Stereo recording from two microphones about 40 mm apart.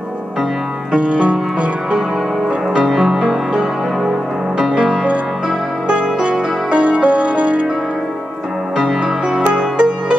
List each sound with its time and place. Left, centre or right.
0.9 s music: right
2.7 s music: centre
4.6 s music: centre
5.9 s music: right
8.7 s music: right